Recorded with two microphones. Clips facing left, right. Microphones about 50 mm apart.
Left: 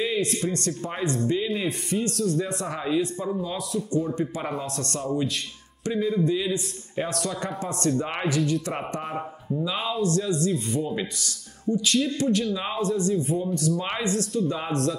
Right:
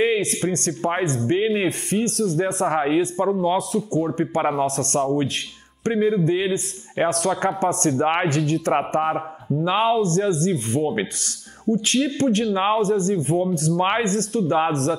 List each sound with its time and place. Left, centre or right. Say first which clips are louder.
0.1 s speech: right 4 dB; right